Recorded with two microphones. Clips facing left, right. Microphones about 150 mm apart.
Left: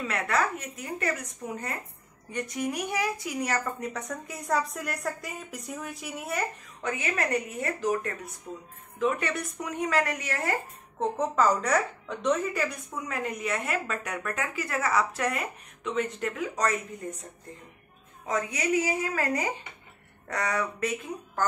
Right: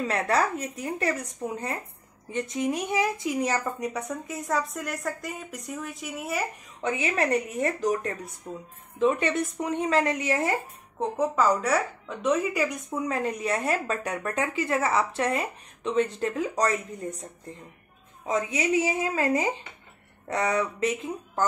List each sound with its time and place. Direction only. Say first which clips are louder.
0.0 s speech: right 3 dB; 35° right (ahead or behind); by 4.0 s 20° right (ahead or behind)
4.3 s speech: left 1 dB; centre (ahead or behind)
6.8 s speech: right 4 dB; 25° right (ahead or behind)
7.5 s speech: right 3 dB; 35° right (ahead or behind)
9.0 s speech: right 4 dB; 25° right (ahead or behind)
11.0 s speech: right 1 dB; 10° right (ahead or behind)
13.1 s speech: right 2 dB; 35° right (ahead or behind)
18.2 s speech: right 3 dB; 25° right (ahead or behind)